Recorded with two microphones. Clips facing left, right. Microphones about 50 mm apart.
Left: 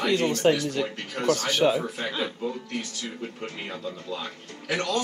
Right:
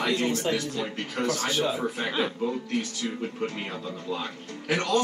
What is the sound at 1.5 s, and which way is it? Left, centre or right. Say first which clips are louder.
Speech: left 5 dB; left.